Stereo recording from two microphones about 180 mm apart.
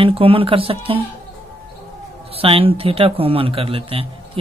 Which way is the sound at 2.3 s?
30° right (ahead or behind).